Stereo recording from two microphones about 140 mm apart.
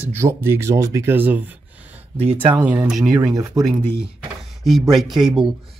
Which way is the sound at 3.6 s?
25° right (ahead or behind).